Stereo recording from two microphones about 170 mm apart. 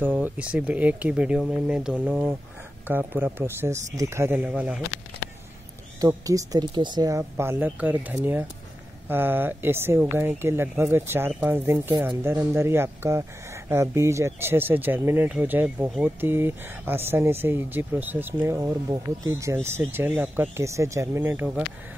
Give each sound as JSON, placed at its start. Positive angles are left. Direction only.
{"t": 0.0, "sound": "speech", "side_deg": -10}
{"t": 5.9, "sound": "speech", "side_deg": -20}